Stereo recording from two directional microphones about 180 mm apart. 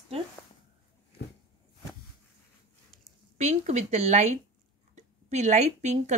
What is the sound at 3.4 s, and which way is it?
Speech, 40° right (ahead or behind).